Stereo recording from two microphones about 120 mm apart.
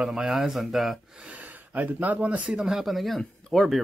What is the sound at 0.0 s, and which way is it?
Speech, 5° right (ahead or behind).